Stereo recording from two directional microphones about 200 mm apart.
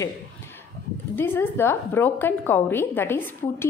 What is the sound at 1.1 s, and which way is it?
A woman's voice, 10° left (ahead or behind).